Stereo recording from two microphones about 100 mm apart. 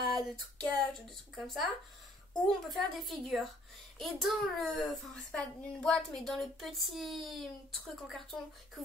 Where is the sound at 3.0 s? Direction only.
Centre (ahead or behind).